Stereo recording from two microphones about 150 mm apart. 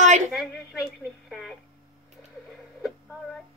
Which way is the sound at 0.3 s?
Centre (ahead or behind).